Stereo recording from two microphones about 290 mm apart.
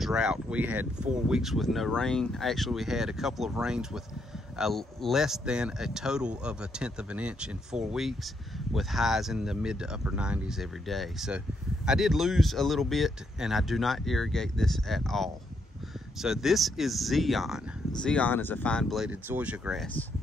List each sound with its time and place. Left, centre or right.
0.0 s speech: centre